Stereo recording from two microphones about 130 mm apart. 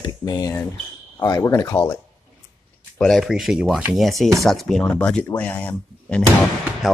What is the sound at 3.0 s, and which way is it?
Speech, centre (ahead or behind).